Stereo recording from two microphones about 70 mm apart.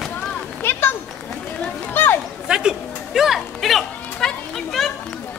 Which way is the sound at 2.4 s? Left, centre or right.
Centre.